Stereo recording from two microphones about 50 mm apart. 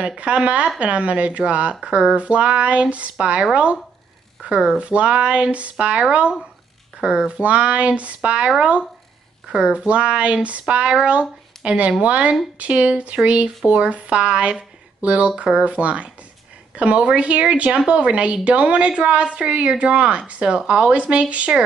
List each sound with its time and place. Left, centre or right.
0.0 s speech: right
4.7 s speech: right